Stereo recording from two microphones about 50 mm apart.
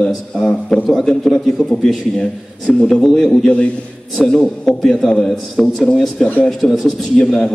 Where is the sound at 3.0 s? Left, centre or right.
Centre.